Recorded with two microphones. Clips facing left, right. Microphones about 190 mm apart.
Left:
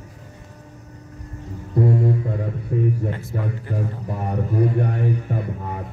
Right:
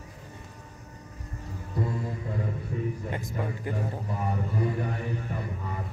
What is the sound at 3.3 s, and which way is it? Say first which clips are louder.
Speech: left 3 dB; 55° left (ahead or behind).